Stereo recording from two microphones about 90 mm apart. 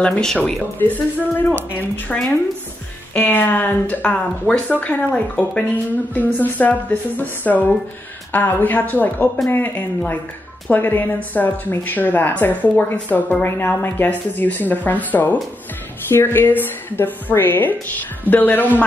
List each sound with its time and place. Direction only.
0.0 s speech: 10° left (ahead or behind)
0.7 s a woman's voice: 20° left (ahead or behind)